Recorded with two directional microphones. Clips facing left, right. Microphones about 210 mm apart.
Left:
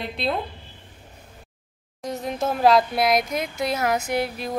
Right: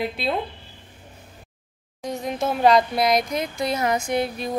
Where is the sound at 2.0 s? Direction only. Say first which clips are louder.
Right 1 dB; centre (ahead or behind).